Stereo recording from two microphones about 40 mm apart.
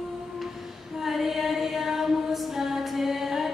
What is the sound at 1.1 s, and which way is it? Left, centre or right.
Music, centre.